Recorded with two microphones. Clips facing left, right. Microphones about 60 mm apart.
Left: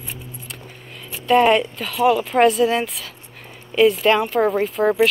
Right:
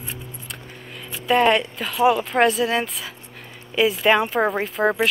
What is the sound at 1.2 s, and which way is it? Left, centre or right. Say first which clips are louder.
Speech: left 3 dB; centre.